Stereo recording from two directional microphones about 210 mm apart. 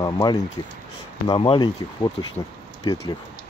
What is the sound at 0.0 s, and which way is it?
Speech, 20° left (ahead or behind).